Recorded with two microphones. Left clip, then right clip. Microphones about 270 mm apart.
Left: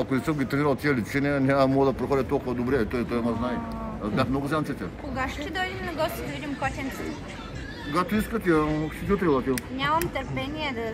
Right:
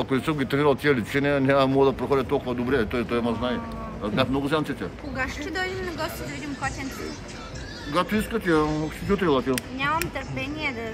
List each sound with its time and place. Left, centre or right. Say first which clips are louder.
0.0 s speech: right 1 dB; centre
5.1 s a woman's voice: right 1 dB; left
8.0 s speech: right 2 dB; centre
9.8 s speech: left 3 dB; left